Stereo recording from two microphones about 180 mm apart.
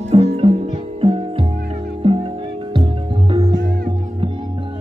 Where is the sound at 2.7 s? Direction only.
30° right (ahead or behind).